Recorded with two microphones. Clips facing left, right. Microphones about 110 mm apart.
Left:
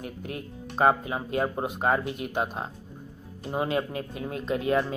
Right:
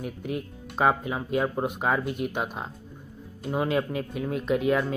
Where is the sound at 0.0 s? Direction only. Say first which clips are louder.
Right 4 dB; centre (ahead or behind).